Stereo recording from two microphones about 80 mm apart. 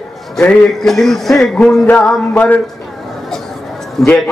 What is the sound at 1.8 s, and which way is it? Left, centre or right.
Speech, centre.